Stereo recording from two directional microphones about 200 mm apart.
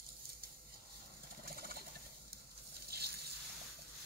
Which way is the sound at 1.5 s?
50° right (ahead or behind).